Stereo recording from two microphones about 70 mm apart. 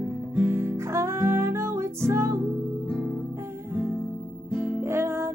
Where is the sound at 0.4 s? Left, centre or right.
Right.